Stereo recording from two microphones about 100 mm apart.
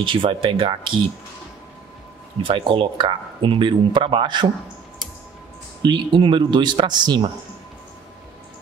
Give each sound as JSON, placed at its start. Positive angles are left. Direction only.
{"t": 0.0, "sound": "speech", "side_deg": -60}
{"t": 2.4, "sound": "speech", "side_deg": -60}
{"t": 5.8, "sound": "speech", "side_deg": -55}